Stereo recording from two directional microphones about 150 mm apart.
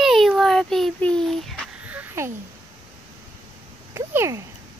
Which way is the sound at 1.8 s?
10° right (ahead or behind).